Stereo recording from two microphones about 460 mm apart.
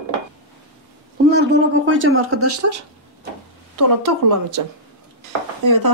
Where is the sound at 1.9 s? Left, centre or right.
Right.